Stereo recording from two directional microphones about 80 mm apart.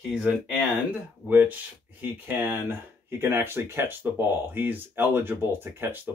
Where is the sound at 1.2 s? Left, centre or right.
Right.